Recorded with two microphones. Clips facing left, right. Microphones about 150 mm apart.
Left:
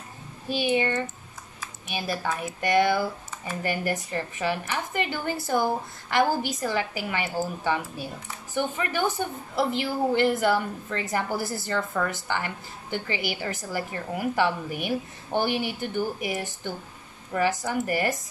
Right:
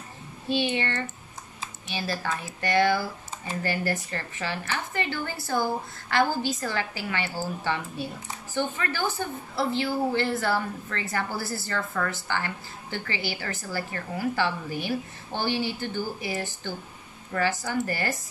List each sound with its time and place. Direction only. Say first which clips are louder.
0.6 s a woman's voice: left 4 dB; 10° left (ahead or behind)